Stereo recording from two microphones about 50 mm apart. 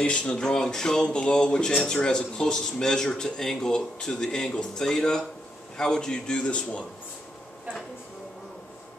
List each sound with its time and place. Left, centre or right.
0.0 s speech: centre